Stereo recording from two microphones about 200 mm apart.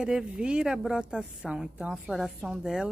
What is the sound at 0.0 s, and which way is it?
A woman's voice, 5° right (ahead or behind).